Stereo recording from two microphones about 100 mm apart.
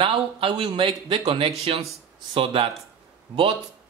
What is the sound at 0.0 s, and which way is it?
Speech, 60° right (ahead or behind).